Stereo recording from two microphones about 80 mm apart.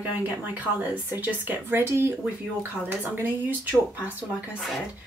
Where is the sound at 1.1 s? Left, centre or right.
Right.